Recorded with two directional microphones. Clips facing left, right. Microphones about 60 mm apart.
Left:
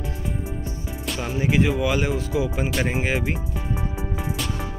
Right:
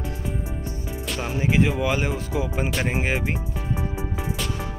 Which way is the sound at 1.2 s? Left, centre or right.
Right.